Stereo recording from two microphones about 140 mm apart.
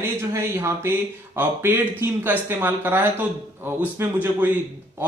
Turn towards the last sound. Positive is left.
turn(degrees=-15)  # may be behind; listen again after turning